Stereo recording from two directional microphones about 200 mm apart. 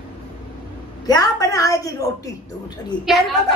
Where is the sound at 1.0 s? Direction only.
20° left (ahead or behind).